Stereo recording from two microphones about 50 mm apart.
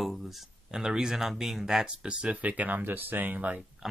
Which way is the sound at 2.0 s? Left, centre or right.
Centre.